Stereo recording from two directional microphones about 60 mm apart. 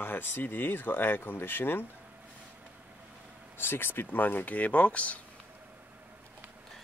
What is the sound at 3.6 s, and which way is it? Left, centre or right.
Speech, left.